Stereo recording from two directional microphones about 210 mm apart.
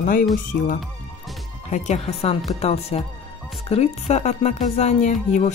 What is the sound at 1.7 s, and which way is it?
Speech, 35° left (ahead or behind).